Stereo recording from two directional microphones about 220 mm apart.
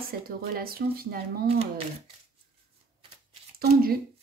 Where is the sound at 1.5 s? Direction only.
30° right (ahead or behind).